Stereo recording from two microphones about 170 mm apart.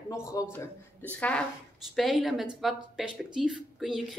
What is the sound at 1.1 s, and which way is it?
A woman's voice, 10° left (ahead or behind).